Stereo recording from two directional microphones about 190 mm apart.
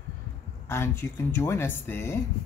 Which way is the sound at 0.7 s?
10° left (ahead or behind).